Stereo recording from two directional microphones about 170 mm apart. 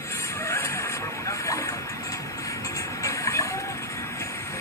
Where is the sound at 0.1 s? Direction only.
15° left (ahead or behind).